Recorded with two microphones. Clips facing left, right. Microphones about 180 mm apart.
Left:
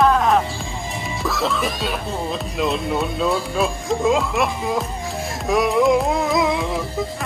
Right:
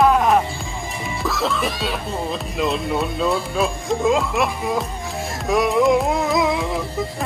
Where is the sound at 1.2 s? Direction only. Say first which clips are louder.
Even; centre (ahead or behind).